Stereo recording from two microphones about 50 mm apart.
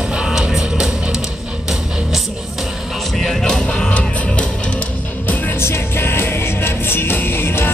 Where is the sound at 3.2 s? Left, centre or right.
Centre.